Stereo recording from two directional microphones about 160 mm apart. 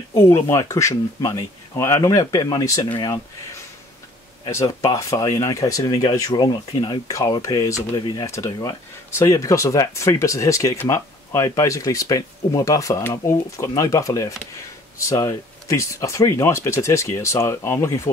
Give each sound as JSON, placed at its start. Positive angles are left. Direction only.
{"t": 0.1, "sound": "speech", "side_deg": 15}
{"t": 4.5, "sound": "speech", "side_deg": 20}